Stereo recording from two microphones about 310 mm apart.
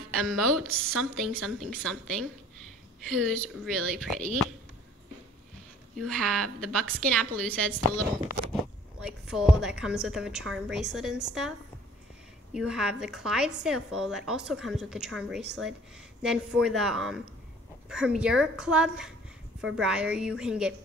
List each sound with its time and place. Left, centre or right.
0.1 s a woman's voice: centre
0.7 s a woman's voice: right
1.1 s a woman's voice: centre
5.9 s a woman's voice: centre
9.0 s a woman's voice: centre
12.5 s a woman's voice: centre